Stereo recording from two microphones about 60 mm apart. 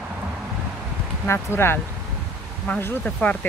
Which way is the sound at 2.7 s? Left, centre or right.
Left.